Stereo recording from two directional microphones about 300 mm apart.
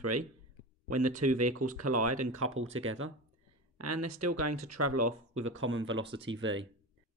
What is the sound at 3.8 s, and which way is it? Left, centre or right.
Speech, right.